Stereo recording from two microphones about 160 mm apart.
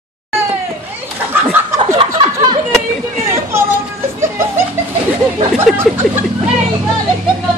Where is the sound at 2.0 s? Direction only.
30° right (ahead or behind).